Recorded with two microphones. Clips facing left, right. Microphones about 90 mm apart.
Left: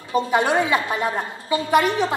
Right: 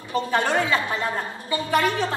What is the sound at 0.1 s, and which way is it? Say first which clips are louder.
A woman's voice: left 3 dB; 15° left (ahead or behind).